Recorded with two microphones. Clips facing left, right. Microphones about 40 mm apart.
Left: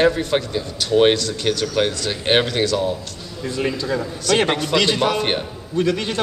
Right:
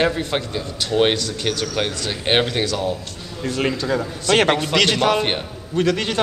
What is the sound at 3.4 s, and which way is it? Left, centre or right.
Speech, right.